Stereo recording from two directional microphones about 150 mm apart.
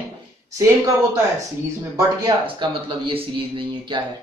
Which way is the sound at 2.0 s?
30° right (ahead or behind).